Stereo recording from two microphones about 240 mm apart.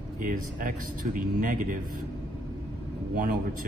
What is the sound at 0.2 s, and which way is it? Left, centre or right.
Speech, right.